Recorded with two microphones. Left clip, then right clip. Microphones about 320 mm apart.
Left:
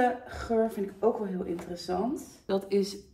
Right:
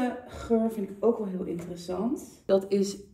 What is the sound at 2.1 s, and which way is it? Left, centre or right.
Speech, centre.